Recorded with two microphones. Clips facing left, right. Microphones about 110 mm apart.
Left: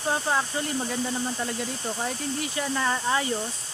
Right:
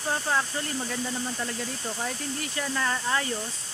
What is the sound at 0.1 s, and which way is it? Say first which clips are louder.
Speech: left 1 dB; 15° left (ahead or behind).